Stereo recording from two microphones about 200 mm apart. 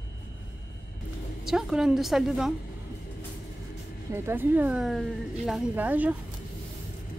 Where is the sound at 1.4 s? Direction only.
Centre (ahead or behind).